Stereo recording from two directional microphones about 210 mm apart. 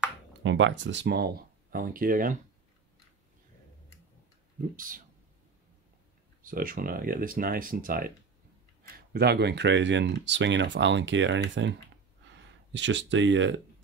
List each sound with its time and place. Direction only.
0.4 s speech: 60° right (ahead or behind); by 2.3 s 40° right (ahead or behind)
4.7 s speech: 40° right (ahead or behind)
6.4 s speech: 40° right (ahead or behind)
9.1 s speech: 50° right (ahead or behind)
12.7 s speech: 60° right (ahead or behind)